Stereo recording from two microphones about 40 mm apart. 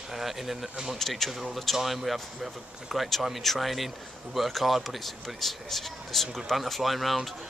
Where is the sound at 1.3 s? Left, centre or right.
Centre.